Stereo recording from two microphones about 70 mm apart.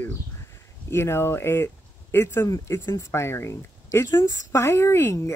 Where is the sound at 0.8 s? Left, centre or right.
Left.